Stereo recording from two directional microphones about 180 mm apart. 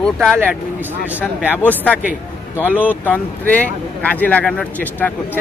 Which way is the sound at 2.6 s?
10° right (ahead or behind).